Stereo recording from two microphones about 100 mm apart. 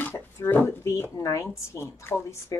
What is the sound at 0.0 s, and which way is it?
Speech, 20° left (ahead or behind).